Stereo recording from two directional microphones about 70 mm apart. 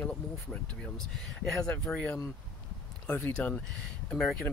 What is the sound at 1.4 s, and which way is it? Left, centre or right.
Speech, centre.